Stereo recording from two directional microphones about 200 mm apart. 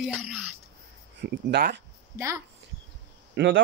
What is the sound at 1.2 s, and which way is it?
Speech, 55° right (ahead or behind).